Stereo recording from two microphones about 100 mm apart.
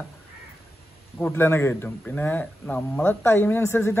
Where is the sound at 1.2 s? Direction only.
20° left (ahead or behind).